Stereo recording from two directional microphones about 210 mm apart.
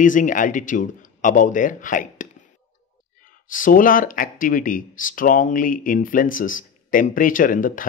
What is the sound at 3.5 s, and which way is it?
Speech, 40° left (ahead or behind).